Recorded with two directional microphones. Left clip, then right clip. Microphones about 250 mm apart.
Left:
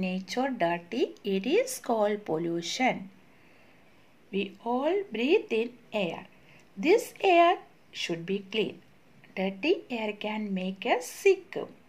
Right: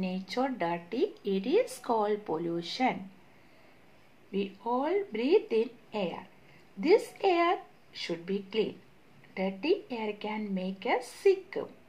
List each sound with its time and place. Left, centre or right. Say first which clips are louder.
0.0 s speech: left 1 dB; left
4.3 s speech: left 1 dB; left